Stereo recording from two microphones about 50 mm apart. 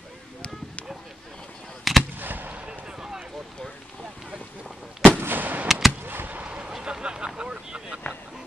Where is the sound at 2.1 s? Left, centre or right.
Right.